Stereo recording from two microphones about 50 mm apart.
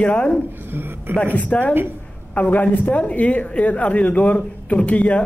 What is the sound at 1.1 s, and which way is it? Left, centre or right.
Speech, left.